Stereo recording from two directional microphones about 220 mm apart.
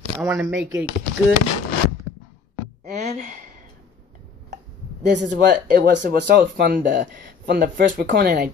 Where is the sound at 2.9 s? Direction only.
30° right (ahead or behind).